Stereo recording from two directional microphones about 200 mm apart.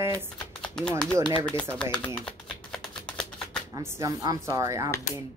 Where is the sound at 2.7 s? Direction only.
5° left (ahead or behind).